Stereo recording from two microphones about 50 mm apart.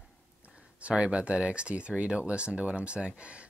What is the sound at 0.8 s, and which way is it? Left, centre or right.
Speech, right.